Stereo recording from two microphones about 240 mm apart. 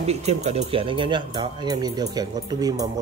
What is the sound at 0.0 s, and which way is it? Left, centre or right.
Speech, right.